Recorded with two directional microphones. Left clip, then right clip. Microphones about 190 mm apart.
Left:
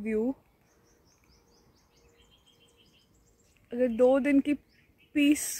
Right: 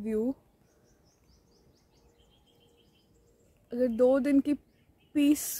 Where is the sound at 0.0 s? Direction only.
Centre (ahead or behind).